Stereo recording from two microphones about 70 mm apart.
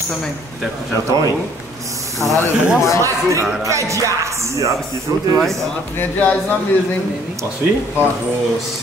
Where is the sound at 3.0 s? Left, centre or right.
Right.